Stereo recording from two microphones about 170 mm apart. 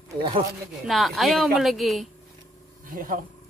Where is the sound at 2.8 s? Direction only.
55° right (ahead or behind).